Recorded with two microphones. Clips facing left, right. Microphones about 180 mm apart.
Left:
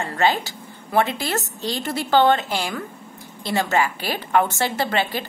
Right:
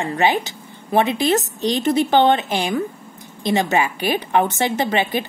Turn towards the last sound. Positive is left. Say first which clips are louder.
# right 3 dB
turn(degrees=-20)  # may be behind; listen again after turning